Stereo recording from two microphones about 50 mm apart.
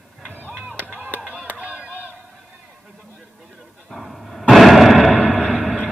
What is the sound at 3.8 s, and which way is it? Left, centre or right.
Dog, centre.